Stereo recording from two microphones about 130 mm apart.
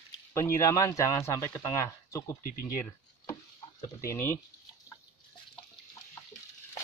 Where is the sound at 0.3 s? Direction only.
20° left (ahead or behind).